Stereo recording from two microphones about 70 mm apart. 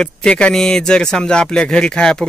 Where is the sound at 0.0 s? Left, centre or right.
Centre.